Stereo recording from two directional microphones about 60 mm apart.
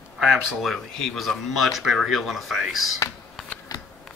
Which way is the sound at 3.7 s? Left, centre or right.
Left.